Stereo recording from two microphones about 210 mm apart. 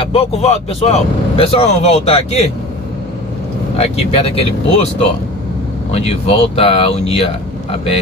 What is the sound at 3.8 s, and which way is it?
Speech, 30° left (ahead or behind).